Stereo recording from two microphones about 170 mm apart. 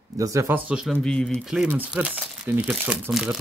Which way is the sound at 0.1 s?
20° right (ahead or behind).